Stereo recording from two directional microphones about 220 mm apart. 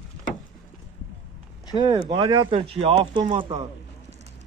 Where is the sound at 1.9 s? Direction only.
20° right (ahead or behind).